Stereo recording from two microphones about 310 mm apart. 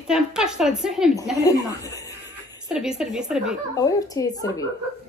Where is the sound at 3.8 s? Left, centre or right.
Centre.